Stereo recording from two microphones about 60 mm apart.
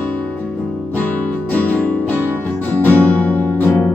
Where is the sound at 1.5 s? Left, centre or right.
Left.